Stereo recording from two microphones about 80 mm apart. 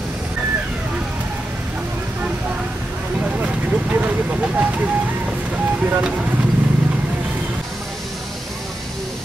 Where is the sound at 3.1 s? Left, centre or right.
Centre.